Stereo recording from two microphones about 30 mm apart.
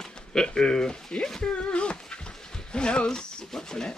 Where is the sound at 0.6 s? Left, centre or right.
Left.